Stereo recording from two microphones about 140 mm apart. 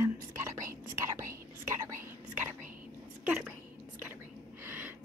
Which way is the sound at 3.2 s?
10° right (ahead or behind).